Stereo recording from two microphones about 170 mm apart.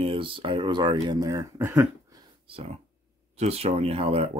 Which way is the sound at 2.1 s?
30° right (ahead or behind).